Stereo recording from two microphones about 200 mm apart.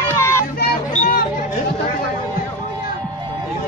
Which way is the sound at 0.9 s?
40° left (ahead or behind).